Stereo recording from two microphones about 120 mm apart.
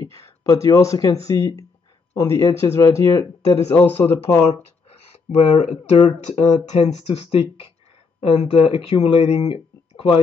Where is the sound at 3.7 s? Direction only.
15° left (ahead or behind).